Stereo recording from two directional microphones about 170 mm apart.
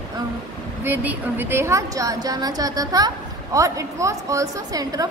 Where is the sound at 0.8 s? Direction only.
10° right (ahead or behind).